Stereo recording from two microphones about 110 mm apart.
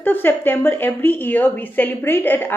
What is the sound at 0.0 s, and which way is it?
A woman's voice, 15° left (ahead or behind).